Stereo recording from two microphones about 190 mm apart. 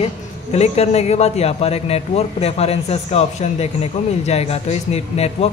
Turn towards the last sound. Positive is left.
turn(degrees=35)  # may be behind; listen again after turning